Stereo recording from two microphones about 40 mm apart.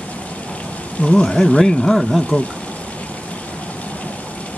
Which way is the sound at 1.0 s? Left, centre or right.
Left.